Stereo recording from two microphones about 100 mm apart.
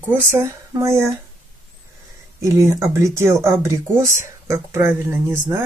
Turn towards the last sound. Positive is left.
turn(degrees=-25)  # may be behind; listen again after turning